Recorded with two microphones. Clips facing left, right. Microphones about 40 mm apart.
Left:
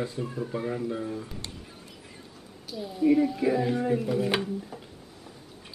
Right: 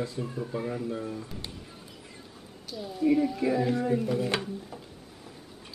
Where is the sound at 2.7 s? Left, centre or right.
Centre.